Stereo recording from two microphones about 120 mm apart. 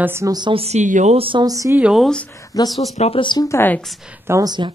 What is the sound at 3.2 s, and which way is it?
Speech, 40° left (ahead or behind).